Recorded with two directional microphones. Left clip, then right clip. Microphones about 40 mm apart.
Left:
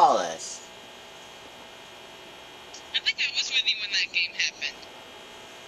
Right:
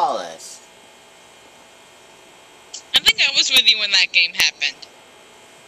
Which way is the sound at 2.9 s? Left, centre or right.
Right.